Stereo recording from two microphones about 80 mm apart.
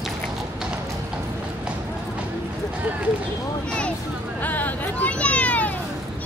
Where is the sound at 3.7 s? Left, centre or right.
Centre.